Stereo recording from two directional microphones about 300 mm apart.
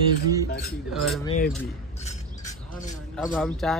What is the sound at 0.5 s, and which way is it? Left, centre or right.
Speech, left.